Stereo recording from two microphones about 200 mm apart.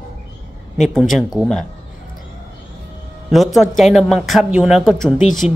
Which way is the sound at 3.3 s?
Centre (ahead or behind).